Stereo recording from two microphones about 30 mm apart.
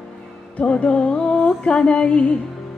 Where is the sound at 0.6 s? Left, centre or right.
Left.